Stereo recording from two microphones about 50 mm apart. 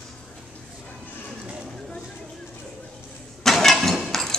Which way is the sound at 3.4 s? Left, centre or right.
Centre.